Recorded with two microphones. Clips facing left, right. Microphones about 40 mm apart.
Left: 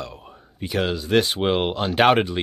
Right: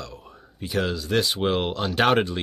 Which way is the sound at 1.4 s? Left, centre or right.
Centre.